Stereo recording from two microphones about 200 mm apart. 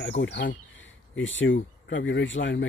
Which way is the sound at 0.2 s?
65° left (ahead or behind).